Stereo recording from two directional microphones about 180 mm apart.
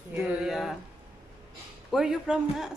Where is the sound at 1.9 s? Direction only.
5° right (ahead or behind).